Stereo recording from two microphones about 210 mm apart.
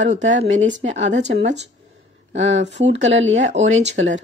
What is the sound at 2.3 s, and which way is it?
A woman's voice, 60° right (ahead or behind).